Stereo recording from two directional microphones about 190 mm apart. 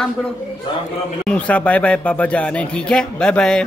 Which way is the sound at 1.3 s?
5° left (ahead or behind).